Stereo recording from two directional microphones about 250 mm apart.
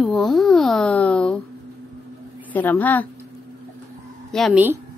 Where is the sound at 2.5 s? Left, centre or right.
Centre.